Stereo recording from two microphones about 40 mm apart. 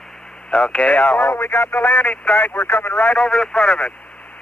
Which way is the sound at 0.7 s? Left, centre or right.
Left.